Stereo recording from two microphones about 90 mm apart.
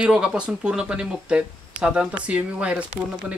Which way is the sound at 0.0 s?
10° right (ahead or behind).